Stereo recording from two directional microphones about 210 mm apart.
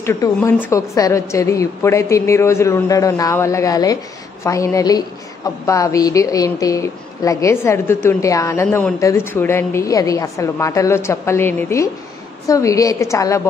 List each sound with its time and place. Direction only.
0.0 s a woman's voice: 15° left (ahead or behind)